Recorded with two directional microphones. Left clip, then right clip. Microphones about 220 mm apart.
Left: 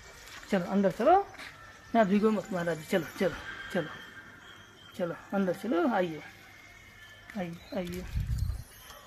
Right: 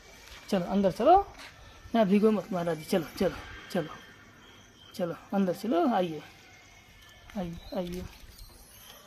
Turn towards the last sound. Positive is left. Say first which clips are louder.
# right 1 dB
turn(degrees=-15)  # may be behind; listen again after turning